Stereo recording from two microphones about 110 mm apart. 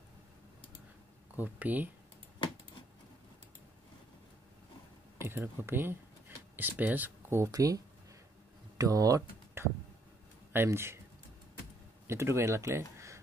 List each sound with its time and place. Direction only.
1.3 s speech: 15° right (ahead or behind)
5.2 s speech: 20° right (ahead or behind)
12.1 s speech: 25° right (ahead or behind)